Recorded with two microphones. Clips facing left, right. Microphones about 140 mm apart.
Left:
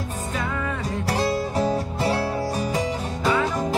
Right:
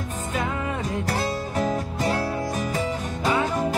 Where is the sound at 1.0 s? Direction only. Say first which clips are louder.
Left 3 dB; 40° left (ahead or behind).